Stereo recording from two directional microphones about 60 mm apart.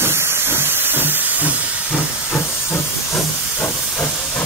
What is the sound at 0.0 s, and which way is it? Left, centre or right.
Hiss, right.